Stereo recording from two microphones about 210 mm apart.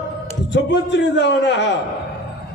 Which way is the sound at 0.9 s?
55° left (ahead or behind).